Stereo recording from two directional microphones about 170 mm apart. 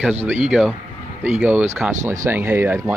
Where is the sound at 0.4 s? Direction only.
5° right (ahead or behind).